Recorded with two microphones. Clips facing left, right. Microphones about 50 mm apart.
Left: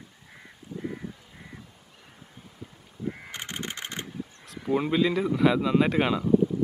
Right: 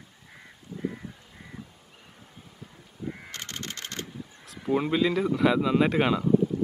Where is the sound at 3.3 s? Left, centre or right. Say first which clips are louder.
Left 2 dB; centre.